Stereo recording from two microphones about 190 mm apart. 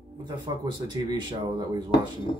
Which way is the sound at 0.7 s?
20° right (ahead or behind).